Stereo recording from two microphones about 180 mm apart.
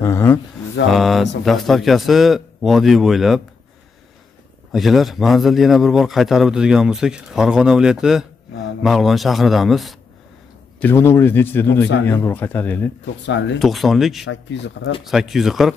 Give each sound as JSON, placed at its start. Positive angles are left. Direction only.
{"t": 0.0, "sound": "a man's voice", "side_deg": 15}
{"t": 0.8, "sound": "a man's voice", "side_deg": 0}
{"t": 4.7, "sound": "a man's voice", "side_deg": 0}
{"t": 10.8, "sound": "a man's voice", "side_deg": 10}
{"t": 14.2, "sound": "speech", "side_deg": 80}
{"t": 15.0, "sound": "a man's voice", "side_deg": 0}